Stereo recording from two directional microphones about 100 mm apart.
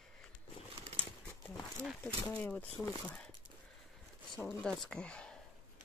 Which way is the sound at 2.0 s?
15° left (ahead or behind).